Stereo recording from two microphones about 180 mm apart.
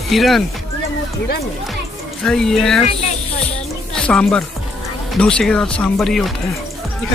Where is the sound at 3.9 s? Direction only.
5° left (ahead or behind).